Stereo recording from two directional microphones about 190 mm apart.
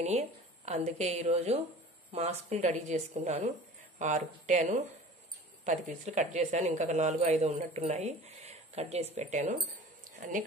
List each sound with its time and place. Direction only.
0.0 s a woman's voice: 35° right (ahead or behind)